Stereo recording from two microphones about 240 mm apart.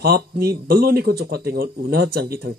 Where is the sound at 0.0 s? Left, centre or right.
Right.